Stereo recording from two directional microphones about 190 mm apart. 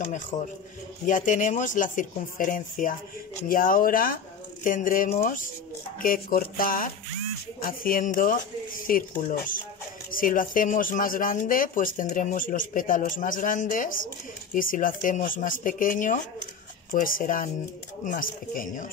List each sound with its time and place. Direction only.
1.0 s speech: 40° left (ahead or behind)